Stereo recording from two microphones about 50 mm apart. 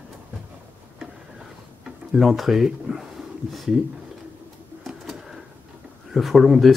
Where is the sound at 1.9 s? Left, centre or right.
Centre.